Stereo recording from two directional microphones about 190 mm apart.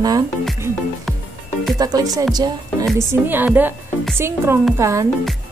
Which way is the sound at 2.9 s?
10° right (ahead or behind).